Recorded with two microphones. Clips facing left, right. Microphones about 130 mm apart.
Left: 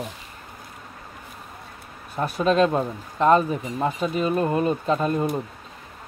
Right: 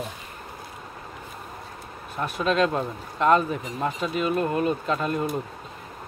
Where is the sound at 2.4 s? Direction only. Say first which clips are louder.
Left 3 dB; 35° left (ahead or behind).